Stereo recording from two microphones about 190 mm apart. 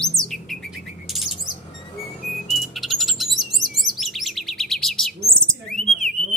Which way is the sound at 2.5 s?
Centre (ahead or behind).